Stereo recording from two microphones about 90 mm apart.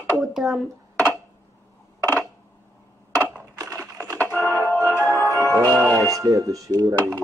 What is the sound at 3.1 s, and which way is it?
Crushing, 20° right (ahead or behind).